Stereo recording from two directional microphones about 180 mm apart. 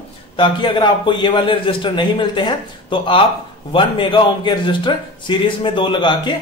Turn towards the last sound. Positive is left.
turn(degrees=25)  # may be behind; listen again after turning